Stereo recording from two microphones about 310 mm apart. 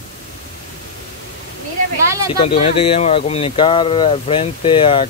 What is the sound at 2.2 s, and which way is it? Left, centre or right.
Speech, centre.